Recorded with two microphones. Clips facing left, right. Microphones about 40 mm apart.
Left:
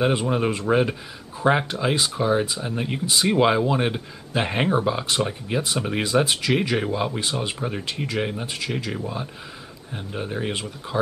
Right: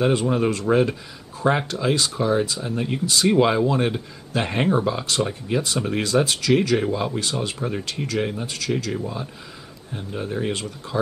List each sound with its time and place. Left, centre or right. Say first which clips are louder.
0.0 s speech: right 1 dB; centre